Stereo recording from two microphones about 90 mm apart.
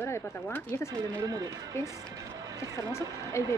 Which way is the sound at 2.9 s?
30° left (ahead or behind).